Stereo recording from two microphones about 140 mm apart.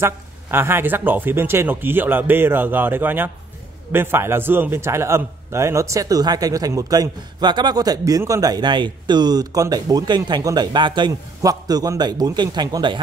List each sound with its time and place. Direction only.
0.0 s a man's voice: 15° right (ahead or behind); by 13.0 s 35° right (ahead or behind)